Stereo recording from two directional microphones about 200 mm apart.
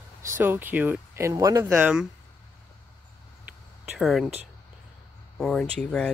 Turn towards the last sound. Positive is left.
turn(degrees=5)  # may be behind; listen again after turning